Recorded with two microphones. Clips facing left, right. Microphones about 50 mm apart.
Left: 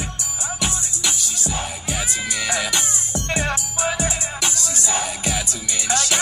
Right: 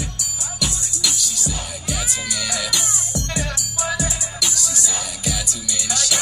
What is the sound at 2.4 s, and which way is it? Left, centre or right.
Music, left.